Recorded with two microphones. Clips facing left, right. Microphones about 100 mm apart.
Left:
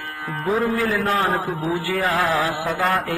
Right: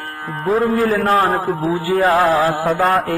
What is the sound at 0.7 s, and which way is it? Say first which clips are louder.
Music: right 5 dB; 40° right (ahead or behind).